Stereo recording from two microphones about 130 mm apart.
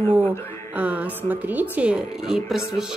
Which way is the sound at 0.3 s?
10° right (ahead or behind).